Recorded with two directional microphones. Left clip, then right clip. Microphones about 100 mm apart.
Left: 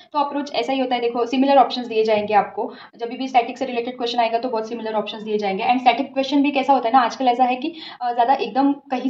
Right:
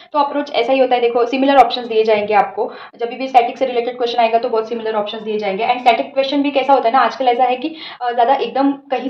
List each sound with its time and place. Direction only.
0.1 s a woman's voice: 20° left (ahead or behind)
4.1 s a woman's voice: 60° left (ahead or behind)